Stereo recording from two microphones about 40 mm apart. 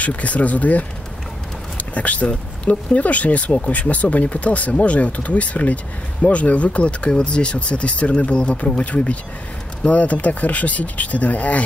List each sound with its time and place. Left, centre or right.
0.0 s speech: left